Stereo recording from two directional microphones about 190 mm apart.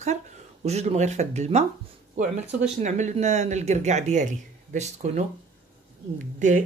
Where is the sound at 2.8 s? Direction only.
40° right (ahead or behind).